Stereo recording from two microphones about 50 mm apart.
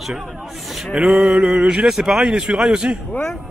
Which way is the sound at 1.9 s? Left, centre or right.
Centre.